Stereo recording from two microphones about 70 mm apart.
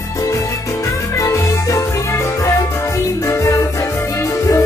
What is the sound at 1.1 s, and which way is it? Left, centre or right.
Music, left.